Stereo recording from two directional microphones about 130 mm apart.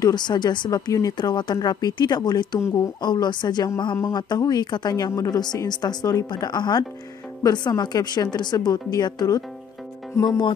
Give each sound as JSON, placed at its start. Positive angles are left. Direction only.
{"t": 0.0, "sound": "speech", "side_deg": 35}